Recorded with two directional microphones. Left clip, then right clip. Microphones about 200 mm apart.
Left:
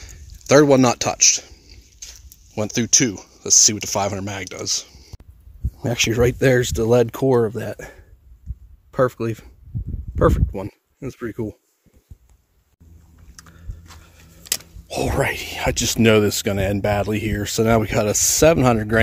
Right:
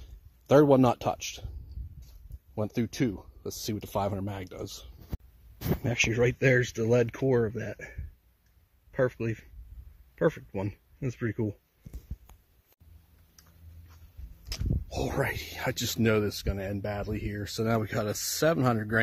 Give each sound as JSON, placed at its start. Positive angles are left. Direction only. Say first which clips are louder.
{"t": 0.0, "sound": "a sound", "louder": "left 18 dB", "side_deg": -5}
{"t": 2.5, "sound": "speech", "louder": "left 14 dB", "side_deg": -5}
{"t": 14.9, "sound": "speech", "louder": "left 10 dB", "side_deg": 10}
{"t": 16.0, "sound": "speech", "louder": "left 12 dB", "side_deg": 35}